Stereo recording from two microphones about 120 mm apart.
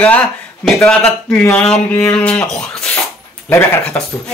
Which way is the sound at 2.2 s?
10° left (ahead or behind).